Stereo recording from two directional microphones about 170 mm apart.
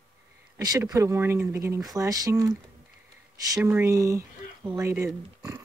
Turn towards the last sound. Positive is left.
turn(degrees=-15)  # may be behind; listen again after turning